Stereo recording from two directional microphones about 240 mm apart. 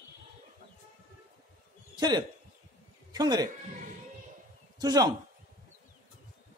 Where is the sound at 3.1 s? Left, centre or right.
Centre.